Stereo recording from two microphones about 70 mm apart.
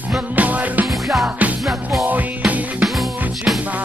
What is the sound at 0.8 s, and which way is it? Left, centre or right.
Music, centre.